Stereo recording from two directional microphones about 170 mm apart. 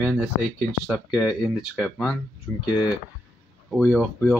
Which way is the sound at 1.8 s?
Centre (ahead or behind).